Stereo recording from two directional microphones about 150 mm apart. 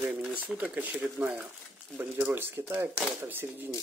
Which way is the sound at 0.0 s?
10° right (ahead or behind).